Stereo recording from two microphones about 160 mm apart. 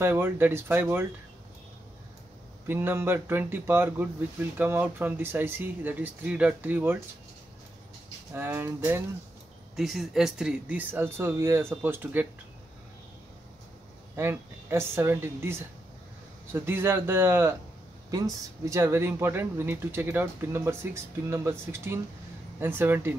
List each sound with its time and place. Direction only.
0.0 s speech: 15° right (ahead or behind)
2.7 s speech: 15° right (ahead or behind)
8.4 s speech: 15° right (ahead or behind)
9.8 s speech: centre (ahead or behind)
14.1 s speech: 15° right (ahead or behind)
16.5 s speech: 15° right (ahead or behind)